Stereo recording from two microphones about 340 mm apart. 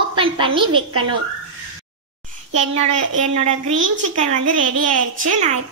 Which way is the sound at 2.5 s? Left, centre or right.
Centre.